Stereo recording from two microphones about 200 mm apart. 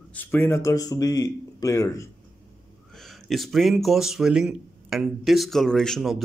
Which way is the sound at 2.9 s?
Centre (ahead or behind).